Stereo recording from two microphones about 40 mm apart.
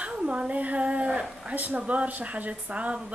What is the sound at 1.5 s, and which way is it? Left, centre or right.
Speech, right.